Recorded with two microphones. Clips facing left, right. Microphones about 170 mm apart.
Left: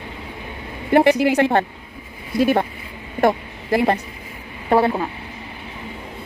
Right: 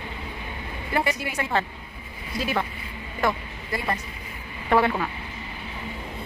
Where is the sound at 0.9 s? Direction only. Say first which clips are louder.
Left 12 dB; 70° left (ahead or behind); by 2.6 s 55° left (ahead or behind).